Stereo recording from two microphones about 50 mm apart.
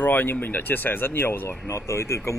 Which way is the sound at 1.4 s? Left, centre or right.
Left.